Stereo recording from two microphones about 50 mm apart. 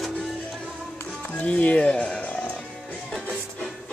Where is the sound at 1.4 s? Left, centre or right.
Left.